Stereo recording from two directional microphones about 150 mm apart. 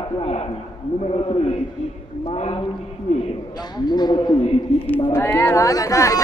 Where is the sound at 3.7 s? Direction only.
30° left (ahead or behind).